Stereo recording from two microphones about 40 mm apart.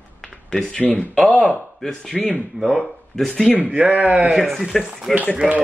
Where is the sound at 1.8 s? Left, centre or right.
Centre.